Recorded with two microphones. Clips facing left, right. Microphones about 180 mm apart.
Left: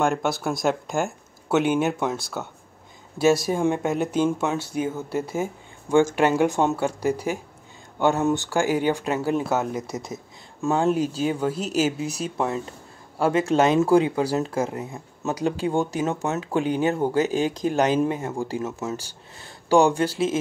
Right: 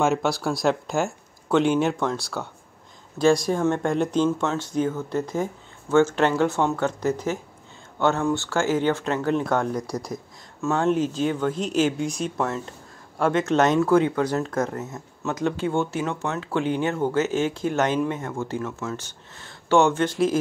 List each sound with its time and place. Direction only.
0.0 s speech: centre (ahead or behind)
9.8 s speech: 25° left (ahead or behind)
10.7 s speech: 10° left (ahead or behind)